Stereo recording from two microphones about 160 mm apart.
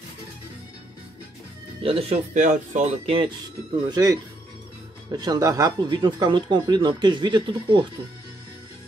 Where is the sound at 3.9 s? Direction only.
25° right (ahead or behind).